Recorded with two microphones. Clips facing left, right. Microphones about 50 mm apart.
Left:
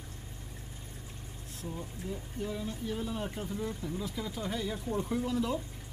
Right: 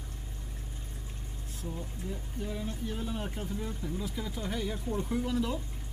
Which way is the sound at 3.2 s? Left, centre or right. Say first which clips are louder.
Left 1 dB; centre.